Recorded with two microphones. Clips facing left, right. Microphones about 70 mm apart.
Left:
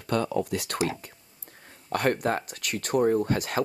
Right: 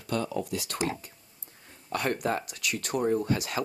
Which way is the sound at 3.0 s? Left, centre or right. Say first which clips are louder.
Left 4 dB; left.